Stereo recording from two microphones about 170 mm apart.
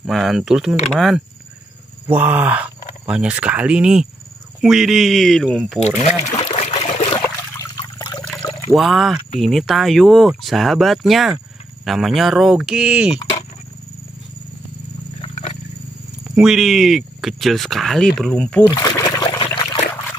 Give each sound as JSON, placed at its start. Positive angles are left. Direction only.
{"t": 0.0, "sound": "speech", "side_deg": 0}
{"t": 2.0, "sound": "speech", "side_deg": -10}
{"t": 5.9, "sound": "speech", "side_deg": 40}
{"t": 6.4, "sound": "water", "side_deg": 30}
{"t": 8.7, "sound": "speech", "side_deg": 0}
{"t": 15.2, "sound": "a sound", "side_deg": 35}
{"t": 16.3, "sound": "speech", "side_deg": -5}
{"t": 18.8, "sound": "trickle", "side_deg": 20}